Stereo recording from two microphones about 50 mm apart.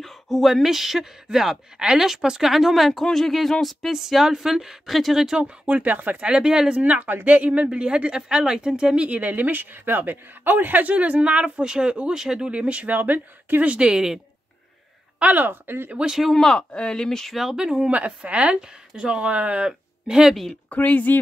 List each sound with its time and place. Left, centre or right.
0.0 s speech: centre
5.4 s speech: right
6.2 s speech: centre
6.8 s speech: right; by 12.4 s centre
12.4 s speech: right
15.3 s speech: right
15.9 s speech: centre
16.2 s speech: centre
16.5 s speech: centre
17.4 s speech: centre
17.9 s speech: right
19.6 s speech: centre
20.7 s speech: left